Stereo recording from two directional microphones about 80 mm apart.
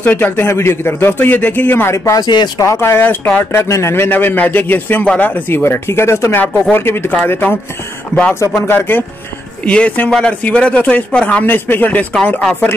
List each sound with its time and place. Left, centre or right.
0.0 s a man's voice: left
0.5 s a man's voice: left
2.2 s speech: left
2.6 s a man's voice: left
3.5 s a man's voice: left
8.1 s speech: centre
8.4 s a man's voice: left